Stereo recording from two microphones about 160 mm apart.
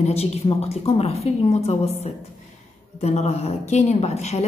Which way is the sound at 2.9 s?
45° left (ahead or behind).